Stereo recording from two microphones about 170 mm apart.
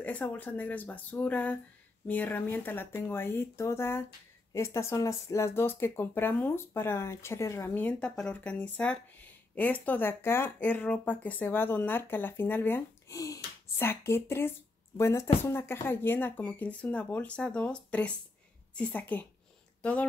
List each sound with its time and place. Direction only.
0.0 s speech: 10° left (ahead or behind)